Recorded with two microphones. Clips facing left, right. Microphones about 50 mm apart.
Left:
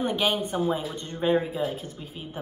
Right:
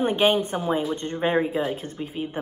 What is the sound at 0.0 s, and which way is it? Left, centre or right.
A woman's voice, right.